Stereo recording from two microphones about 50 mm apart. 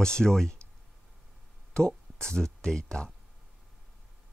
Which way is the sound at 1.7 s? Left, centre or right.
Centre.